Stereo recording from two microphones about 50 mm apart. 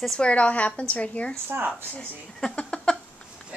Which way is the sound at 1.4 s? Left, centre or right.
Right.